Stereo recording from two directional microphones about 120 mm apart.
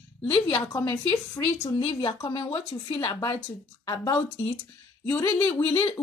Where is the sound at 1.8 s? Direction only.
45° left (ahead or behind).